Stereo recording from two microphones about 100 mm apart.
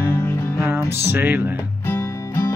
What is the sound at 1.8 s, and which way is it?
Music, 25° left (ahead or behind).